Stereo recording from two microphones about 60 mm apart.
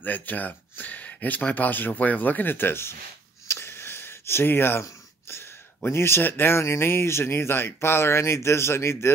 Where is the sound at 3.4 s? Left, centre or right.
Left.